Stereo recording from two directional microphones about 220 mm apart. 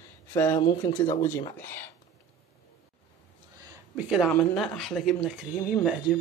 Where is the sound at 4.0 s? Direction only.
5° right (ahead or behind).